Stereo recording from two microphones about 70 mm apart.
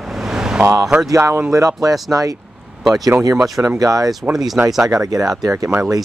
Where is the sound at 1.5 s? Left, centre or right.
Right.